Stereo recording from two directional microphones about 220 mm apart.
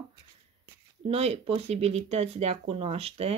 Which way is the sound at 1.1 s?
25° right (ahead or behind).